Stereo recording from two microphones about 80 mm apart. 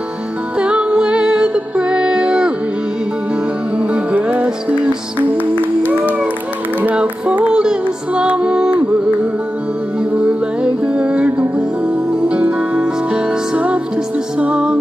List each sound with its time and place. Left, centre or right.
0.6 s music: centre
3.7 s music: centre
5.4 s music: left
5.9 s a sound: right
6.8 s music: centre
9.9 s music: centre